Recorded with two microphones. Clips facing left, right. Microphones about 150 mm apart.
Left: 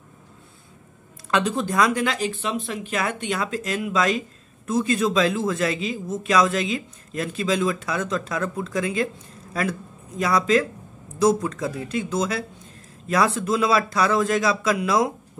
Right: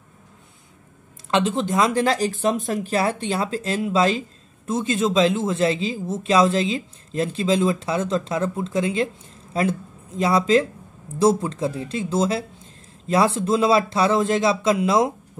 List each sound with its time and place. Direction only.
1.3 s speech: 25° right (ahead or behind)